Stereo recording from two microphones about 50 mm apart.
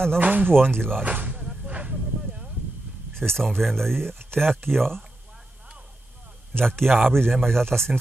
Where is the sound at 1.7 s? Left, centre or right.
Right.